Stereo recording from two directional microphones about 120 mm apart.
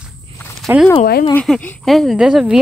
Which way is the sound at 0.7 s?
20° right (ahead or behind).